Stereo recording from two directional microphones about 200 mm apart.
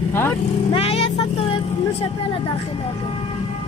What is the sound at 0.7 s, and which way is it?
Vehicle, 30° left (ahead or behind).